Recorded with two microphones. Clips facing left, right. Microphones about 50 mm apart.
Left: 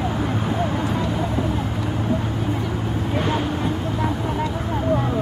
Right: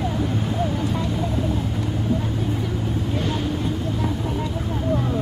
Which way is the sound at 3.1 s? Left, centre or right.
Left.